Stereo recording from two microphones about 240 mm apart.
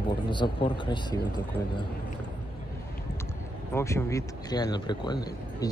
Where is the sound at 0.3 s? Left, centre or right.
Centre.